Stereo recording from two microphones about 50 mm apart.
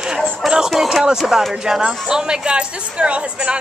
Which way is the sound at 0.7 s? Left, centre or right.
Centre.